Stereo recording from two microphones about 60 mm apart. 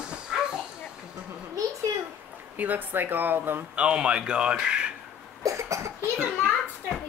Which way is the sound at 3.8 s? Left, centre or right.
Centre.